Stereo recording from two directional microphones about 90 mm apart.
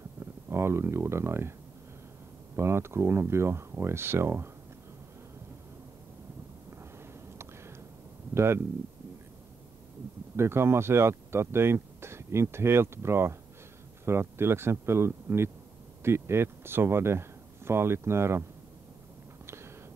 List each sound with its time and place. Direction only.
0.2 s speech: 30° right (ahead or behind)
2.5 s speech: 30° right (ahead or behind)
10.3 s speech: 30° right (ahead or behind)
19.4 s a sound: 30° right (ahead or behind)